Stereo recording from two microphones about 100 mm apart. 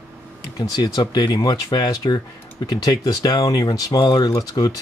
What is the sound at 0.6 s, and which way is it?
Speech, 45° left (ahead or behind).